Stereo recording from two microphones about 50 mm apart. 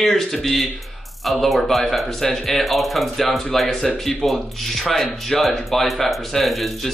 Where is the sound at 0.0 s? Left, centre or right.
Centre.